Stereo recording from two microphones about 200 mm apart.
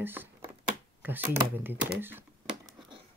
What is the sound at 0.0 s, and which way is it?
Speech, 10° right (ahead or behind).